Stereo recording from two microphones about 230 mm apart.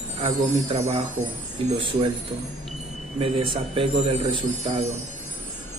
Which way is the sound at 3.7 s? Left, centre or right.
Right.